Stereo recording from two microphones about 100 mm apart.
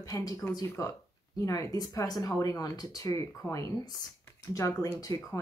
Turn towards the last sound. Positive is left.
turn(degrees=30)  # may be behind; listen again after turning